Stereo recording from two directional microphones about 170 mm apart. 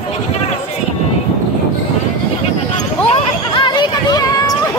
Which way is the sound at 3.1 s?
30° left (ahead or behind).